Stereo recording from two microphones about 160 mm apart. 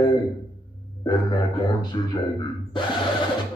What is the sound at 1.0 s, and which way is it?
Speech, 30° left (ahead or behind).